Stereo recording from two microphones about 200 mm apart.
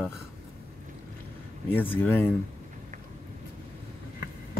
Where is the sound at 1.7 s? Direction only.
10° left (ahead or behind).